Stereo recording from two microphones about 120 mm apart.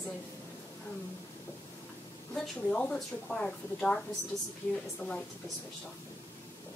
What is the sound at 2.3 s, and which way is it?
Speech, 5° left (ahead or behind).